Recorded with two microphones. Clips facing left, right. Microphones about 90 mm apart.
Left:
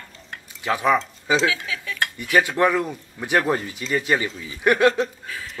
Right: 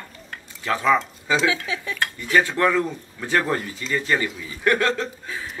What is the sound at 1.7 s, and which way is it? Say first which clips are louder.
Speech: right 2 dB; 25° right (ahead or behind).